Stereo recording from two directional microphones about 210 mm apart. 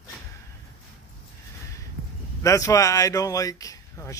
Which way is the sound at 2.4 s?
15° left (ahead or behind).